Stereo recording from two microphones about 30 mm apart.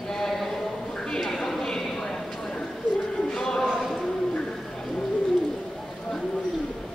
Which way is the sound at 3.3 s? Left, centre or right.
Centre.